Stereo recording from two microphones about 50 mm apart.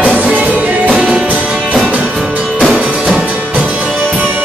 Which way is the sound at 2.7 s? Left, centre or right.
Right.